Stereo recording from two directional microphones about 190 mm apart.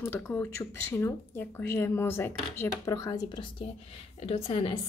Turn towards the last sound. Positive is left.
turn(degrees=30)  # may be behind; listen again after turning